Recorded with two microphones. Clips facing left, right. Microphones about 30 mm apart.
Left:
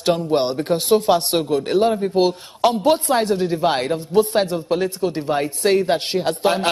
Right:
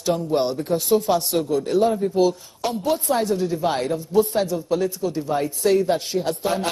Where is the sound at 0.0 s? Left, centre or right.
Left.